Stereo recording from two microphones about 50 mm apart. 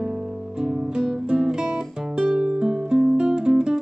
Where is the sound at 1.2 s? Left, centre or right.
Centre.